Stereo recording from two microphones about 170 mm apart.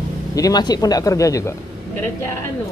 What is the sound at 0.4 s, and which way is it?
Speech, 25° left (ahead or behind).